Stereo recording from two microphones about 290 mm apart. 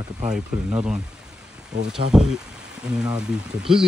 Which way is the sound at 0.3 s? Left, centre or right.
Centre.